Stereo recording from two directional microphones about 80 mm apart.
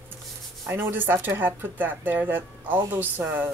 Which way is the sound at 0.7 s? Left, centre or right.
Right.